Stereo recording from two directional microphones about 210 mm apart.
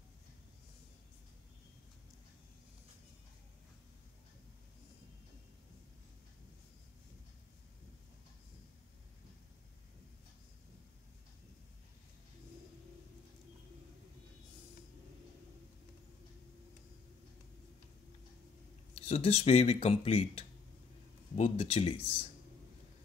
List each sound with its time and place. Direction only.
18.9 s speech: 30° left (ahead or behind)